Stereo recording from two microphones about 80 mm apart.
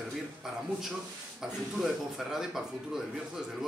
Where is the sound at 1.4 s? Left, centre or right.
Centre.